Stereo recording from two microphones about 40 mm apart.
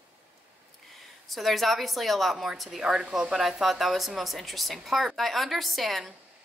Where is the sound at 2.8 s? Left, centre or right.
Centre.